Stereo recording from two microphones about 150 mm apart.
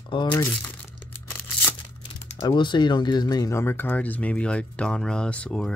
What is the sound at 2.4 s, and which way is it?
Speech, 30° left (ahead or behind).